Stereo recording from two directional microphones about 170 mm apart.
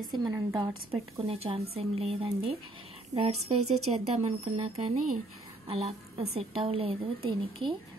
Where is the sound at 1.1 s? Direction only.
35° right (ahead or behind).